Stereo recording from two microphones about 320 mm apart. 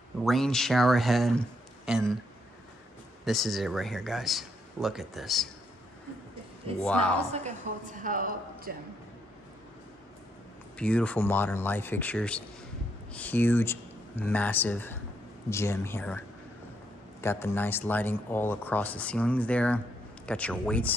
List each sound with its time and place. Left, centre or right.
0.2 s speech: centre
3.3 s speech: centre
6.8 s speech: centre
7.2 s a woman's voice: right
10.8 s speech: centre